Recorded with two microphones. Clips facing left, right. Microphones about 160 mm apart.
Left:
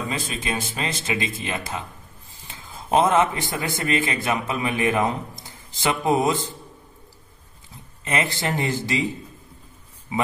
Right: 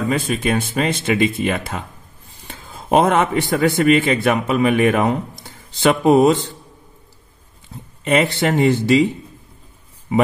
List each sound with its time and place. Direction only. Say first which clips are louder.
0.1 s speech: right 9 dB; 60° right (ahead or behind)
8.3 s speech: right 9 dB; 70° right (ahead or behind)